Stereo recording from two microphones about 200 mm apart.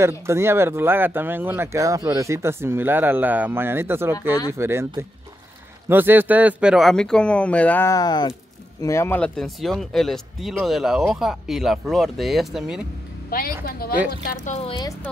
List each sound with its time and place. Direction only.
0.3 s speech: 10° right (ahead or behind)
13.3 s a woman's voice: 45° left (ahead or behind)
14.2 s speech: 35° left (ahead or behind)